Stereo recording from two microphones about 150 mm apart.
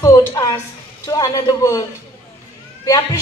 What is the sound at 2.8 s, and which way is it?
Speech, 25° left (ahead or behind).